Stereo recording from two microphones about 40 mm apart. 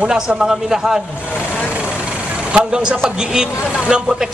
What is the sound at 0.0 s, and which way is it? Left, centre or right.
A man's voice, right.